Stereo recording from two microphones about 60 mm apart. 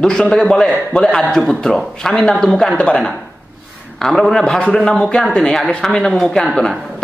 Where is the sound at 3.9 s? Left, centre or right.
Centre.